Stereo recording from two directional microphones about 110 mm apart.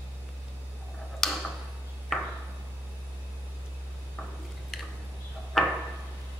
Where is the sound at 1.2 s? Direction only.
Centre (ahead or behind).